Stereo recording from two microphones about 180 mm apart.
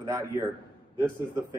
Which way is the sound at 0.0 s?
20° right (ahead or behind).